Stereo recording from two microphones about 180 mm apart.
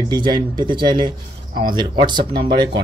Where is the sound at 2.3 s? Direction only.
60° right (ahead or behind).